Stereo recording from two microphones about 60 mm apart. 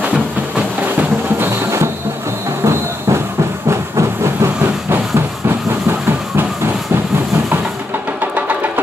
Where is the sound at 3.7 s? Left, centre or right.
Right.